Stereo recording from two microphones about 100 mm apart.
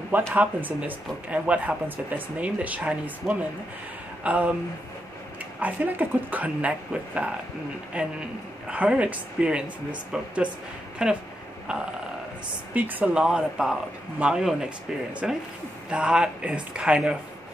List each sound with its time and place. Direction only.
0.3 s speech: 15° right (ahead or behind)
5.6 s speech: 20° right (ahead or behind)
11.6 s a sound: 10° right (ahead or behind)
12.7 s speech: 15° right (ahead or behind)